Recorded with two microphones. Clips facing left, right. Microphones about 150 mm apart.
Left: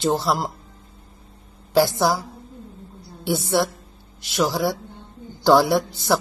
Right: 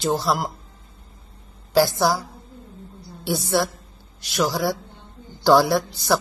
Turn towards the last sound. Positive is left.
turn(degrees=20)  # may be behind; listen again after turning